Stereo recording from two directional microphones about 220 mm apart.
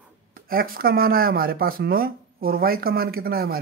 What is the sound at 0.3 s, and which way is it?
Speech, 40° right (ahead or behind).